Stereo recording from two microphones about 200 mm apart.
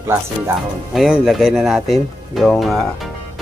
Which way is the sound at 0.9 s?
Centre (ahead or behind).